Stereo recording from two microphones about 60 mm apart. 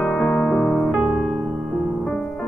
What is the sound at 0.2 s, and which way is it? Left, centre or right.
Electric piano, centre.